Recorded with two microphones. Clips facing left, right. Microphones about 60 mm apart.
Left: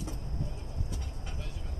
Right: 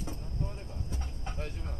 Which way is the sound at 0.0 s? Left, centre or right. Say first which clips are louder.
Right 1 dB; right.